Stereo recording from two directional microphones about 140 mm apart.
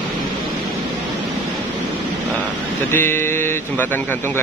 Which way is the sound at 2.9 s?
15° left (ahead or behind).